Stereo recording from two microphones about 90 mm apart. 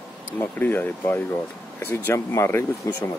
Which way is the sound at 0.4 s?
25° left (ahead or behind).